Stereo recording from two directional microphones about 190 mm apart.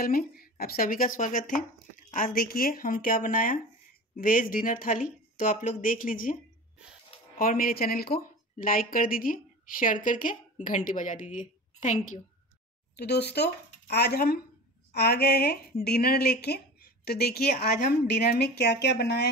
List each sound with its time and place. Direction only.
0.0 s speech: 50° left (ahead or behind)
7.3 s a woman's voice: 50° left (ahead or behind)
12.9 s a woman's voice: 60° left (ahead or behind)